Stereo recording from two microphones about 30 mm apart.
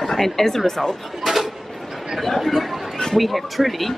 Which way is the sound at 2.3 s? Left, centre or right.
Centre.